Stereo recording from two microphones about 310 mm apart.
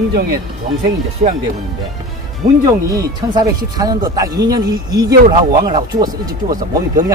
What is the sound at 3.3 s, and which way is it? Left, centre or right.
A woman's voice, centre.